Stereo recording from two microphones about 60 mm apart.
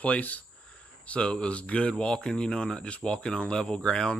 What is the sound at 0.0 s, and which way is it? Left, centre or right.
A man's voice, left.